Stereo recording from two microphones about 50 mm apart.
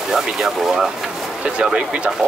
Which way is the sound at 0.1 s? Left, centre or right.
Centre.